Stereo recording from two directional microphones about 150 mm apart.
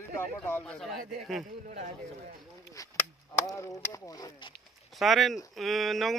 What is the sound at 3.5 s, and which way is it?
Speech, 20° left (ahead or behind).